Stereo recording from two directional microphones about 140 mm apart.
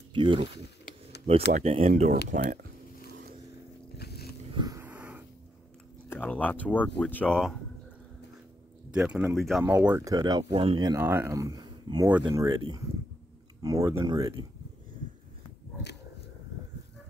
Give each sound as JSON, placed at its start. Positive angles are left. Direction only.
{"t": 0.1, "sound": "speech", "side_deg": -35}
{"t": 1.5, "sound": "speech", "side_deg": -45}
{"t": 4.5, "sound": "vehicle", "side_deg": -35}
{"t": 4.7, "sound": "a sound", "side_deg": -10}
{"t": 6.0, "sound": "speech", "side_deg": 10}
{"t": 8.9, "sound": "speech", "side_deg": -5}